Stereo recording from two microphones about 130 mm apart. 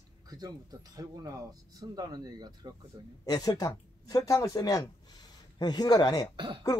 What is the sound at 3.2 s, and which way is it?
A man's voice, 30° left (ahead or behind).